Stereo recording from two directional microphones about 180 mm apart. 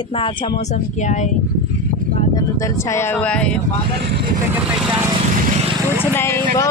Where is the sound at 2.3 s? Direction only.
20° left (ahead or behind).